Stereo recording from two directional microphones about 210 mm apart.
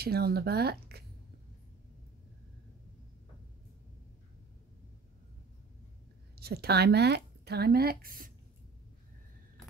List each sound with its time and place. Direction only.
0.0 s speech: 50° right (ahead or behind)
6.4 s speech: 50° right (ahead or behind)